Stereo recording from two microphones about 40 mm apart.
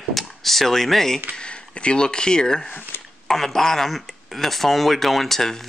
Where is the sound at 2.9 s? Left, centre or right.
Left.